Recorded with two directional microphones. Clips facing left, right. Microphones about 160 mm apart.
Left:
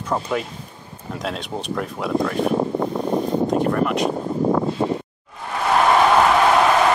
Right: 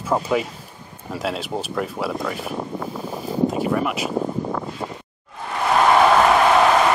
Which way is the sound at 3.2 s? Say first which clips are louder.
Right 1 dB; 5° right (ahead or behind).